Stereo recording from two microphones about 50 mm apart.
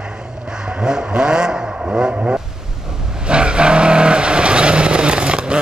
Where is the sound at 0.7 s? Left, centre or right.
Centre.